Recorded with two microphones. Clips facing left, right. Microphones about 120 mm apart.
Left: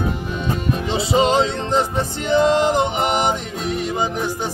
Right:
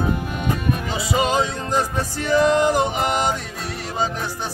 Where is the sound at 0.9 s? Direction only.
25° left (ahead or behind).